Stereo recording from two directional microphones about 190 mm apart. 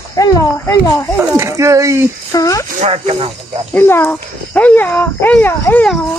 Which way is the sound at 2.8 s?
35° right (ahead or behind).